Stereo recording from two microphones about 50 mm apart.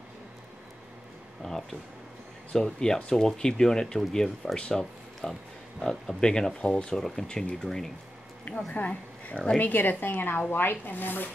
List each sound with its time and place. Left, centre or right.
1.4 s a sound: centre
2.5 s speech: centre
8.5 s a woman's voice: left